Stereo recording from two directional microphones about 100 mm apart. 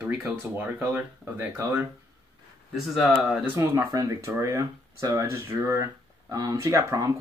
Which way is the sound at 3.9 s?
35° right (ahead or behind).